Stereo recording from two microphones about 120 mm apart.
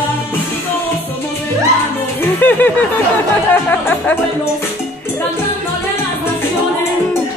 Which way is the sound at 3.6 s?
15° left (ahead or behind).